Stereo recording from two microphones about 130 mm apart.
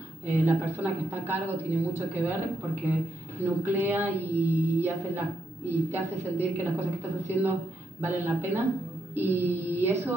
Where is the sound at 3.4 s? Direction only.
15° right (ahead or behind).